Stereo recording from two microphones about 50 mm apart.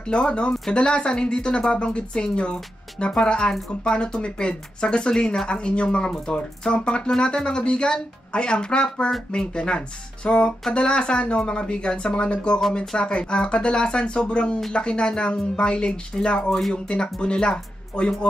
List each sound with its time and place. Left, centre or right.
0.1 s speech: left